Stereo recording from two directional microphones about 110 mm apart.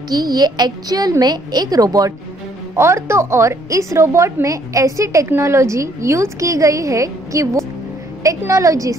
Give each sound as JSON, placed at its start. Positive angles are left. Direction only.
{"t": 0.1, "sound": "a woman's voice", "side_deg": -35}